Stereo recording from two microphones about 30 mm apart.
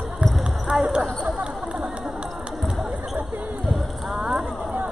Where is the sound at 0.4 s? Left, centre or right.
Centre.